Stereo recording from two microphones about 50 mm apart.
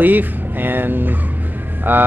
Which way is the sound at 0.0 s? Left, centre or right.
Right.